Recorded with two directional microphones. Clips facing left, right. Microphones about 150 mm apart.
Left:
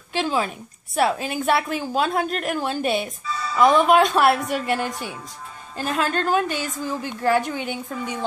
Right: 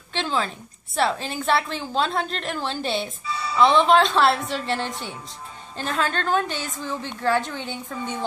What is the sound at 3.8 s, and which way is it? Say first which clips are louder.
A woman's voice: left 1 dB; 10° left (ahead or behind).